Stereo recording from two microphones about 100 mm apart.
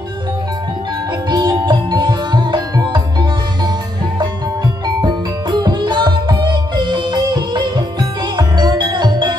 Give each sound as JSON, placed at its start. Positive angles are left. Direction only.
{"t": 1.3, "sound": "music", "side_deg": -45}
{"t": 5.0, "sound": "music", "side_deg": -45}